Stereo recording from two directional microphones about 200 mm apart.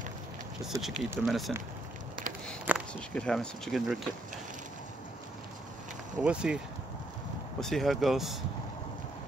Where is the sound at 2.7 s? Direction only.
10° right (ahead or behind).